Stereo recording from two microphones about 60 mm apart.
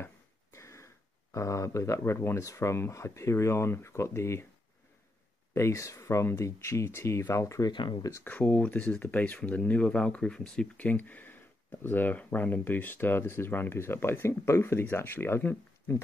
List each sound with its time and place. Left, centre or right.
0.0 s a sound: left
2.4 s speech: left
5.5 s speech: left
7.6 s speech: left
8.2 s speech: left
10.8 s speech: left